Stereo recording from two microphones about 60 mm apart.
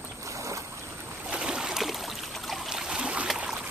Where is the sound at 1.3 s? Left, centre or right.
Centre.